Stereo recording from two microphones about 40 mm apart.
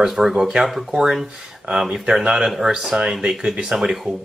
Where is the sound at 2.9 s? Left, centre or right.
Right.